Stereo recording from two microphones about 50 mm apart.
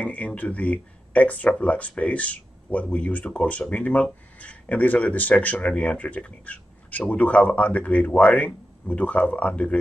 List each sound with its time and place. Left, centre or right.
0.0 s speech: left